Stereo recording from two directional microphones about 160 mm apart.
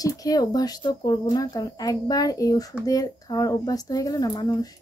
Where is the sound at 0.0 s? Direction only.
20° left (ahead or behind).